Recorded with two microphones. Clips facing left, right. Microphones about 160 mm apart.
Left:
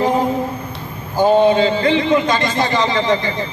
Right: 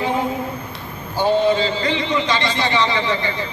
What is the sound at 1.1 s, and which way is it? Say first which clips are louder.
A man's voice: left 4 dB; 55° left (ahead or behind).